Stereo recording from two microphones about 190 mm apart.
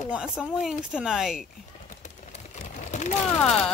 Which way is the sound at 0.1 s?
5° right (ahead or behind).